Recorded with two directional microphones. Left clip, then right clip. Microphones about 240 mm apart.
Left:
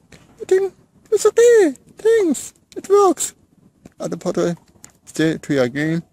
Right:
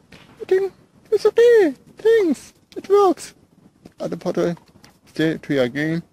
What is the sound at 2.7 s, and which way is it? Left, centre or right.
Speech, centre.